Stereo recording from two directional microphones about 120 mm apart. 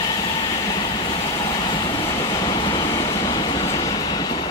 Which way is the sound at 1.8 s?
40° left (ahead or behind).